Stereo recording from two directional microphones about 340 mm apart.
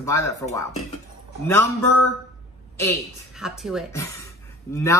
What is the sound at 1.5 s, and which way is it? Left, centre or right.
A woman's voice, centre.